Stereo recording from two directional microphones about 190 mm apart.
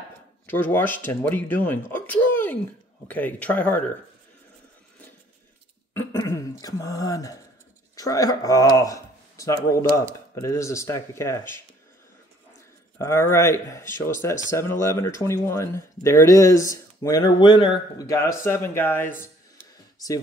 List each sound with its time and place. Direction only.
0.5 s speech: 10° left (ahead or behind)
5.9 s a sound: 15° left (ahead or behind)
7.9 s speech: 20° left (ahead or behind)
13.0 s speech: 15° left (ahead or behind)